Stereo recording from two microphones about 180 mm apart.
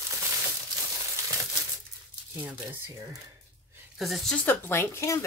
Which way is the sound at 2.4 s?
10° right (ahead or behind).